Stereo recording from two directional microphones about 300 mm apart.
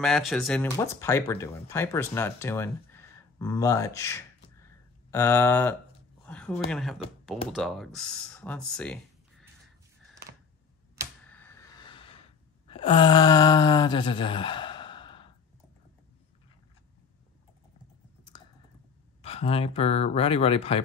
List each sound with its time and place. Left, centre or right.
0.0 s speech: centre
11.2 s a sound: centre
19.2 s speech: centre